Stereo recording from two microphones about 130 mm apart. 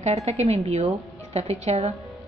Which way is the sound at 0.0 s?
55° right (ahead or behind).